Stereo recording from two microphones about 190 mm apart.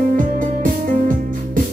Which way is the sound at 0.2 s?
45° right (ahead or behind).